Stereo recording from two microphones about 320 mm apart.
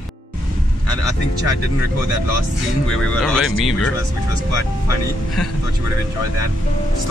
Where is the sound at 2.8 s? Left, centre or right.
Left.